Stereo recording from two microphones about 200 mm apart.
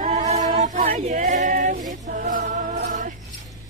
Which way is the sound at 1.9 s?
40° right (ahead or behind).